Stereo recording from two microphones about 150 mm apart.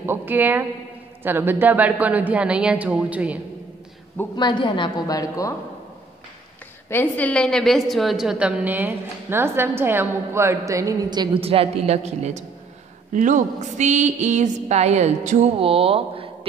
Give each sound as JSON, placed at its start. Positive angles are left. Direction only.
{"t": 0.0, "sound": "a sound", "side_deg": -15}
{"t": 1.2, "sound": "a woman's voice", "side_deg": -15}
{"t": 4.4, "sound": "a woman's voice", "side_deg": 30}
{"t": 6.9, "sound": "a woman's voice", "side_deg": 10}
{"t": 11.4, "sound": "a woman's voice", "side_deg": -40}